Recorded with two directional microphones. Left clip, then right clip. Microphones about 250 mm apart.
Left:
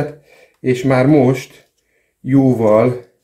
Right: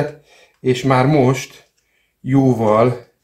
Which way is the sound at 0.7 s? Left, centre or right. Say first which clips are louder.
Left 2 dB; centre.